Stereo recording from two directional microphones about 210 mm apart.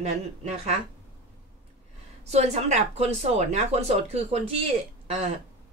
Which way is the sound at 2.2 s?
30° right (ahead or behind).